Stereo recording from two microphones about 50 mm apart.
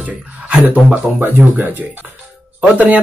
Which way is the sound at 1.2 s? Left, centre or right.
Right.